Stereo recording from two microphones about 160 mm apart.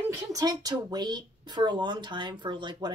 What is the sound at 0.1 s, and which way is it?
A woman's voice, 20° right (ahead or behind).